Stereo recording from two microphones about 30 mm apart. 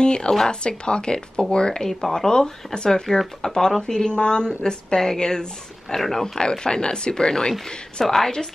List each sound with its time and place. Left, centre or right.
0.0 s speech: left
1.8 s speech: centre
2.1 s speech: left
5.9 s speech: centre
6.5 s speech: left
8.0 s speech: centre